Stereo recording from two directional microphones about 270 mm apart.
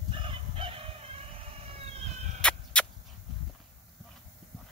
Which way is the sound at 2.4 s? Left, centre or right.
Centre.